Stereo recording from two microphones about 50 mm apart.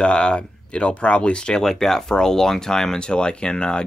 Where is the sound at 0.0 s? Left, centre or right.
Left.